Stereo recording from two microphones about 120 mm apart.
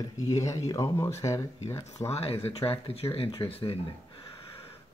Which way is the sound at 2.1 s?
55° left (ahead or behind).